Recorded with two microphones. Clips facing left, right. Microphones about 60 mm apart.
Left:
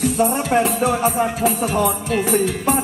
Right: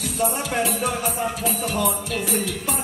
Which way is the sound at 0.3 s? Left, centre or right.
Left.